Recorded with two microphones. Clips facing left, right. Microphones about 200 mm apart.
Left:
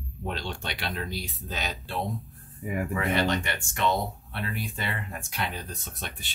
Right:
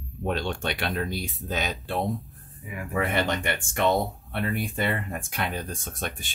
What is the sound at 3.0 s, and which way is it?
Speech, 55° right (ahead or behind).